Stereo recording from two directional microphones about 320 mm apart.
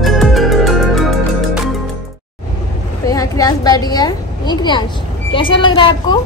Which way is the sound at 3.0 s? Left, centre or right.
Centre.